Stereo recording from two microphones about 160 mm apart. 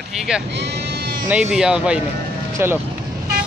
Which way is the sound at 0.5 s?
90° right.